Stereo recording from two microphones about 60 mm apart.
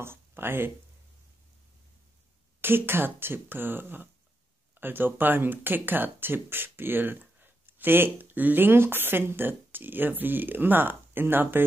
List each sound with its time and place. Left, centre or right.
0.0 s speech: right
2.6 s speech: right